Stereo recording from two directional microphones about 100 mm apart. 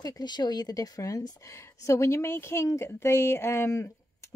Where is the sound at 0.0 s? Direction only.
40° left (ahead or behind).